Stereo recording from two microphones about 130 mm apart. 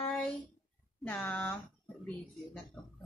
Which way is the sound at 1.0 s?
15° left (ahead or behind).